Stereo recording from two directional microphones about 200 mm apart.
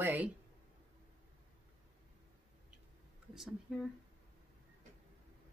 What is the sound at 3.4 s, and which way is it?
Speech, centre (ahead or behind).